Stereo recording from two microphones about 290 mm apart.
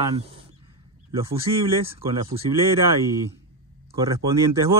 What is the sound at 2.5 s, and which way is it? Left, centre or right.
Speech, centre.